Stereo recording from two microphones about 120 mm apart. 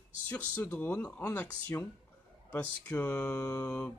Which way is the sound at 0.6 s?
15° left (ahead or behind).